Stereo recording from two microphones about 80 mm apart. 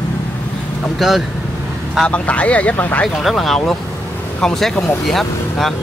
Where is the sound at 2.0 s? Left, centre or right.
Centre.